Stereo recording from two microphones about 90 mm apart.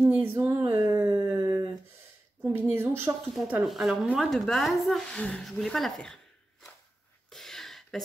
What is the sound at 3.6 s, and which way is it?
Speech, 5° right (ahead or behind).